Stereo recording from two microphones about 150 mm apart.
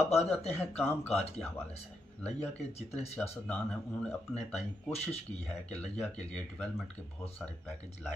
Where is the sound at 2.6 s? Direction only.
45° left (ahead or behind).